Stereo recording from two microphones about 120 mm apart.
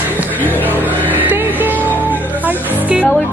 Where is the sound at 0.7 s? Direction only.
15° right (ahead or behind).